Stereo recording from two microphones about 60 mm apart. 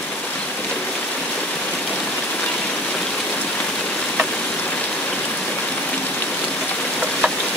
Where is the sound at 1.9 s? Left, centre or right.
Left.